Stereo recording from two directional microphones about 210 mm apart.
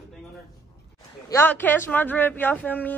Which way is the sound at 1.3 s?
10° left (ahead or behind).